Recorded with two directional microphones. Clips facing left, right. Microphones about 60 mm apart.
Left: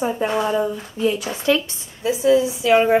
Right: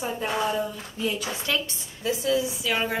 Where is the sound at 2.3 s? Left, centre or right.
Left.